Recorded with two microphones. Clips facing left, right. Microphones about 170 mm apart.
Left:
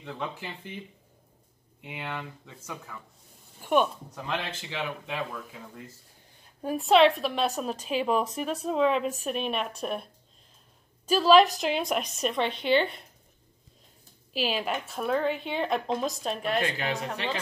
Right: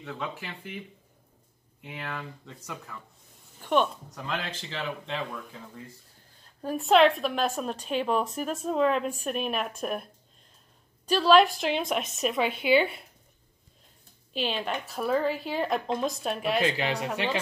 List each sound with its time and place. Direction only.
0.0 s speech: 15° left (ahead or behind)
1.8 s speech: 20° left (ahead or behind)
2.1 s speech: 5° left (ahead or behind)
6.4 s a sound: 10° left (ahead or behind)
6.8 s a woman's voice: centre (ahead or behind)
11.1 s a woman's voice: 5° left (ahead or behind)
14.3 s a woman's voice: 5° left (ahead or behind)